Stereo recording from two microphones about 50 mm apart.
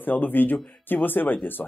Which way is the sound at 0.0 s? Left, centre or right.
Left.